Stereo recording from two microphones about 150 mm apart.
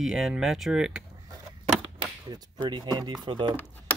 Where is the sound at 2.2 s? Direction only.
30° right (ahead or behind).